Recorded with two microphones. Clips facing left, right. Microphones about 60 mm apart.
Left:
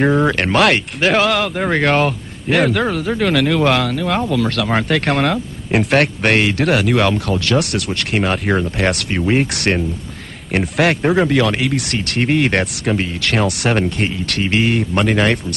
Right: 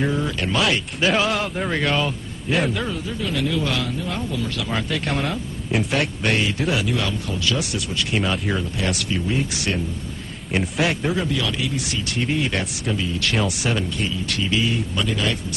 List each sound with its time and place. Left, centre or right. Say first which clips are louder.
0.0 s speech: left 8 dB; left